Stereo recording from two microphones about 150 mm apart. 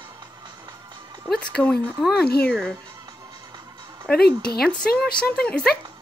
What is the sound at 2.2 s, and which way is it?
Speech, 90° left.